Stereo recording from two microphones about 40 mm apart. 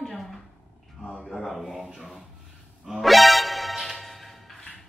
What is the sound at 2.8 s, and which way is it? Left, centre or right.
Music, centre.